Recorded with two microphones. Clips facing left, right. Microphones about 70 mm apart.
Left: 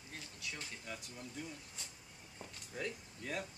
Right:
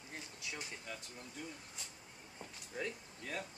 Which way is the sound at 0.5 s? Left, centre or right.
Centre.